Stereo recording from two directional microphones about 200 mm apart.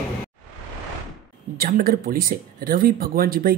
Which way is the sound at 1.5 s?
45° right (ahead or behind).